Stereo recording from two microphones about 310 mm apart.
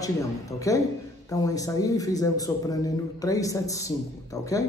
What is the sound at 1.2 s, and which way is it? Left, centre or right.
A man's voice, centre.